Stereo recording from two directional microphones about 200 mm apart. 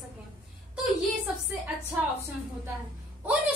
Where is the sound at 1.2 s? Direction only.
10° right (ahead or behind).